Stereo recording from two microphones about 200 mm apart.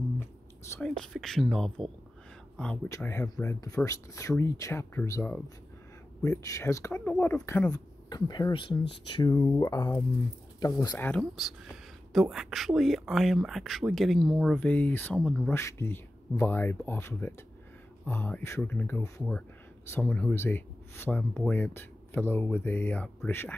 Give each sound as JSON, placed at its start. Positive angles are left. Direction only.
{"t": 0.7, "sound": "speech", "side_deg": 5}
{"t": 7.7, "sound": "speech", "side_deg": 20}
{"t": 11.1, "sound": "speech", "side_deg": 0}